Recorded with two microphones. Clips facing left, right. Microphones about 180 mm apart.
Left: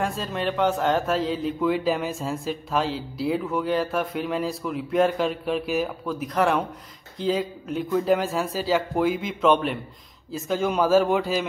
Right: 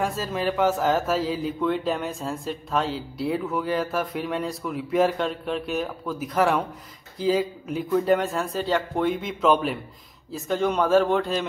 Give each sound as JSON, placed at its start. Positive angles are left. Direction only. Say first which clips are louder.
{"t": 0.0, "sound": "speech", "louder": "right 1 dB", "side_deg": 0}